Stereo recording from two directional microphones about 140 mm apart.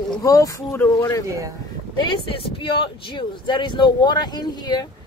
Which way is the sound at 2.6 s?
35° left (ahead or behind).